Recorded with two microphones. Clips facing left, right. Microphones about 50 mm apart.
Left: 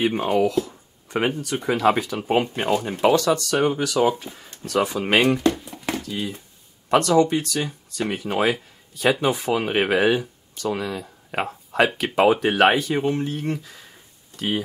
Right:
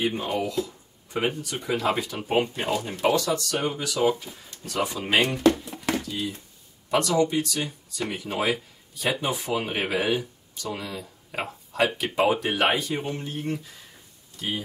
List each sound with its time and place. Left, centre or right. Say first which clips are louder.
0.0 s speech: left 6 dB; left
3.1 s speech: left 5 dB; left
9.0 s speech: left 7 dB; left
14.3 s a sound: left 6 dB; left